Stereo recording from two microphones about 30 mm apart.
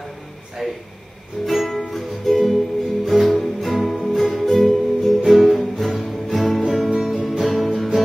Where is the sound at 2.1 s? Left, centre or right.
Centre.